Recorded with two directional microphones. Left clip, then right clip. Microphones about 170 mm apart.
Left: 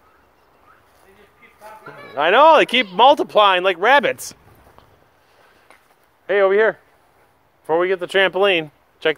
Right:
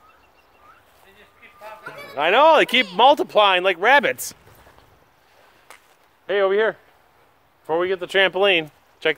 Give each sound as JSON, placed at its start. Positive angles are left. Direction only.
{"t": 1.6, "sound": "a sound", "side_deg": -30}
{"t": 2.1, "sound": "speech", "side_deg": 0}
{"t": 6.2, "sound": "speech", "side_deg": 15}